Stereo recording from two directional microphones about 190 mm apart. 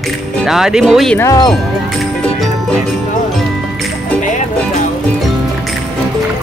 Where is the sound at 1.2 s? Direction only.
20° left (ahead or behind).